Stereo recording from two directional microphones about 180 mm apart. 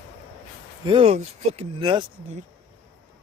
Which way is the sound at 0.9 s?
35° right (ahead or behind).